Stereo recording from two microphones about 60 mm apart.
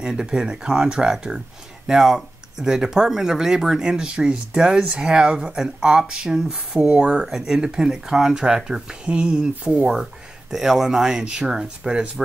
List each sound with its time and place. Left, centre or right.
0.0 s speech: centre